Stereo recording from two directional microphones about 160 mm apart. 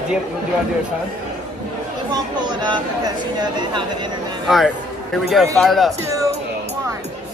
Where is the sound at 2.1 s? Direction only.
25° right (ahead or behind).